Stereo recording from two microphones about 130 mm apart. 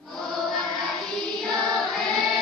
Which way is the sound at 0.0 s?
Centre (ahead or behind).